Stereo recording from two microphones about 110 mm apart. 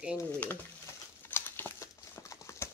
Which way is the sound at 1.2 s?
20° left (ahead or behind).